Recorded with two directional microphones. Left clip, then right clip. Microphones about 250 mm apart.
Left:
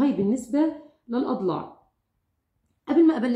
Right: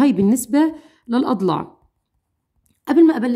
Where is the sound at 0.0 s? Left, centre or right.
Right.